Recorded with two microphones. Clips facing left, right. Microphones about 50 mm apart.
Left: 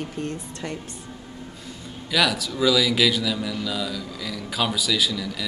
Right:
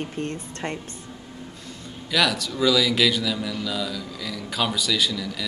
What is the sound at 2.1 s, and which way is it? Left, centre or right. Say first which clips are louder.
Speech: even; centre.